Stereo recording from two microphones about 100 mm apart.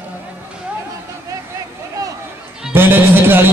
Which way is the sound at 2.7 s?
20° right (ahead or behind).